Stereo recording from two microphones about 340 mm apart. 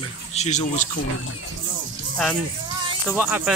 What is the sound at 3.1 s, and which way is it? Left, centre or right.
Speech, centre.